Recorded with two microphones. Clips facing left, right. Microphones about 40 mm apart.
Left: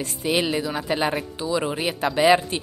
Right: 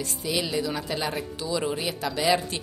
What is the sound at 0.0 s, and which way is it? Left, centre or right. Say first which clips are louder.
Speech: left 5 dB; left.